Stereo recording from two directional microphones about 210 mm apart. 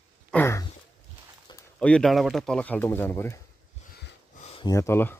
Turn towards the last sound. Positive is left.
turn(degrees=10)  # may be behind; listen again after turning